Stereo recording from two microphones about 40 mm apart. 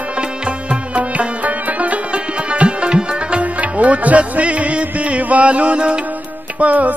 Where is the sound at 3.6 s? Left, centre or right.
Right.